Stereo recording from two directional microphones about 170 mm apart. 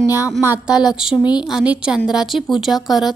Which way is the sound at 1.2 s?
25° left (ahead or behind).